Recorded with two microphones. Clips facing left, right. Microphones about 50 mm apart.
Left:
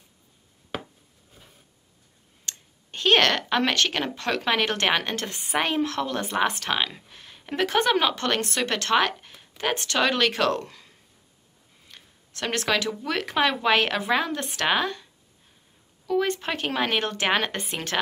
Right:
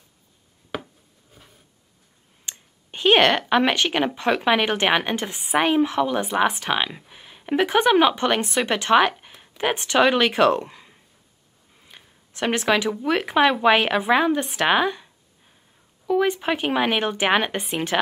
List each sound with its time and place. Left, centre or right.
1.4 s a sound: centre
2.4 s speech: centre
16.1 s speech: centre